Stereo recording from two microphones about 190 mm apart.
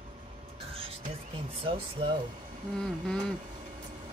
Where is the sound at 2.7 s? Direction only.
5° left (ahead or behind).